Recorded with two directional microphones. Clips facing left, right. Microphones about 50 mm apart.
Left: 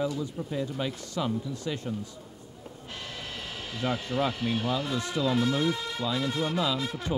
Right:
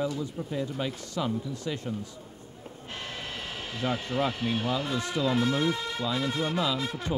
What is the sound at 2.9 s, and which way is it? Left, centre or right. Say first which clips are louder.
Speech: right 2 dB; right.